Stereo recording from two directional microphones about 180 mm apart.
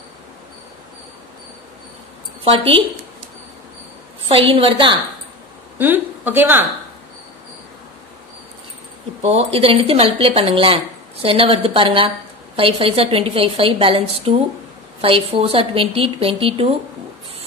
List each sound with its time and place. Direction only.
2.4 s a woman's voice: 30° right (ahead or behind)
4.3 s a woman's voice: 30° right (ahead or behind)
5.8 s a woman's voice: 10° right (ahead or behind)
9.2 s a woman's voice: 35° right (ahead or behind)